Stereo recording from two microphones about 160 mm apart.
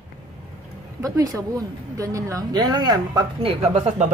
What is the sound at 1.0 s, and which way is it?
Speech, 20° right (ahead or behind).